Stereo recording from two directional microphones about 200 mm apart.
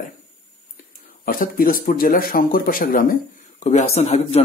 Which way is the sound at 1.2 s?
45° left (ahead or behind).